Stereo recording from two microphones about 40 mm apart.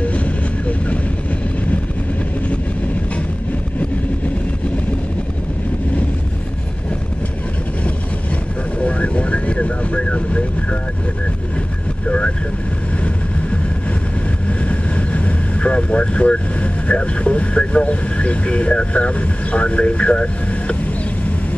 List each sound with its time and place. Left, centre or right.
8.7 s vehicle: left
14.6 s vehicle: left